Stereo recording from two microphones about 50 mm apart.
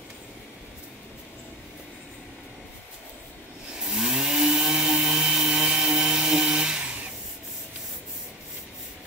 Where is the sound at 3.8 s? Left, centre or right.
Centre.